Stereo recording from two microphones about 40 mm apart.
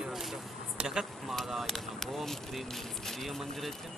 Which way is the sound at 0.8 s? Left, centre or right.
Right.